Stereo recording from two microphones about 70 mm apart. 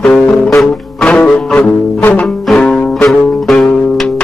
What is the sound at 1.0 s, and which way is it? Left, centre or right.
Music, centre.